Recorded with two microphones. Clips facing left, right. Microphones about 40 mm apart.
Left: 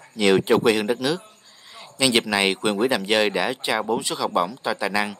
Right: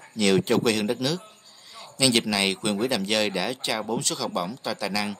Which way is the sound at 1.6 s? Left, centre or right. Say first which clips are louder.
Left 2 dB; centre.